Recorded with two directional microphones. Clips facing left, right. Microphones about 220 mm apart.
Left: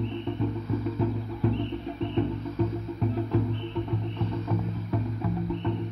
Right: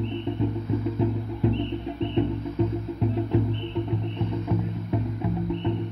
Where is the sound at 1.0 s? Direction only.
25° right (ahead or behind).